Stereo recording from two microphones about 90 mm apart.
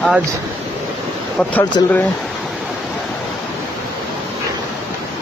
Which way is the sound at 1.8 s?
45° left (ahead or behind).